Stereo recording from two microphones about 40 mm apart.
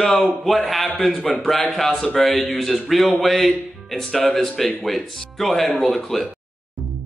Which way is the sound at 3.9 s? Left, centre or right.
Centre.